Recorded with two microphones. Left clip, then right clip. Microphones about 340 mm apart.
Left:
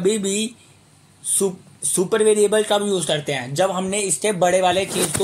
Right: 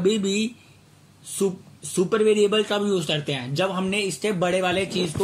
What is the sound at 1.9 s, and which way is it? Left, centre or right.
Speech, centre.